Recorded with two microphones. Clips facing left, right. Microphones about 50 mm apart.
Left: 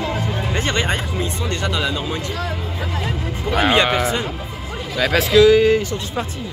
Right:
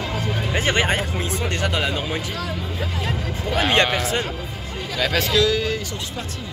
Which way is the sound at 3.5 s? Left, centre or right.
Centre.